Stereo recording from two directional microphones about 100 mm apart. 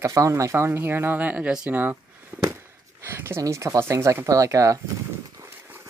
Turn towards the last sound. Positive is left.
turn(degrees=-35)  # may be behind; listen again after turning